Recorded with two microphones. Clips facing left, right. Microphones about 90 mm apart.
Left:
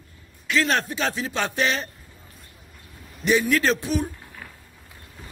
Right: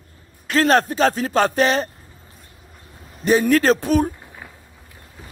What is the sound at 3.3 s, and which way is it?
Speech, 40° right (ahead or behind).